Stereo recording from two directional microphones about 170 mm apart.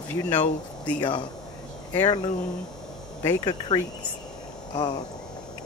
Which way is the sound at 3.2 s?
25° left (ahead or behind).